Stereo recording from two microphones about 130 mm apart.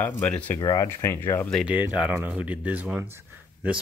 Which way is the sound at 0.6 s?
30° left (ahead or behind).